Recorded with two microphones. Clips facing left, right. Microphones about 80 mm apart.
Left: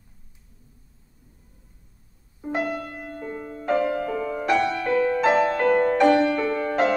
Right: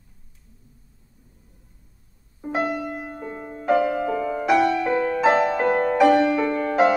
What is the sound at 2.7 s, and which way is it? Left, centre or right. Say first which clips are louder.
Music: right 3 dB; centre.